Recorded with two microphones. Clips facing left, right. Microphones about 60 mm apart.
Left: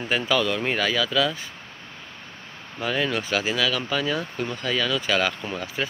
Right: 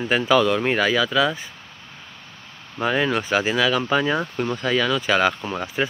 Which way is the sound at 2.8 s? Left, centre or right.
Centre.